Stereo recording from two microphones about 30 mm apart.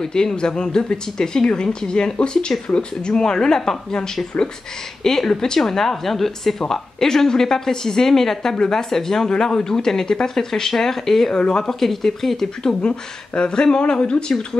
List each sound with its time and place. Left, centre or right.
0.0 s speech: left
5.0 s speech: centre
8.5 s speech: left
9.4 s speech: left; by 11.3 s centre
11.3 s speech: left
11.6 s speech: centre
12.8 s speech: left